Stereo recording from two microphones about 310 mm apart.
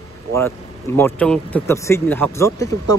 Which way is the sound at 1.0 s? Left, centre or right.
Centre.